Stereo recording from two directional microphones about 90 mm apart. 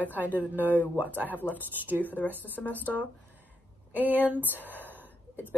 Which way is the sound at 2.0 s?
20° left (ahead or behind).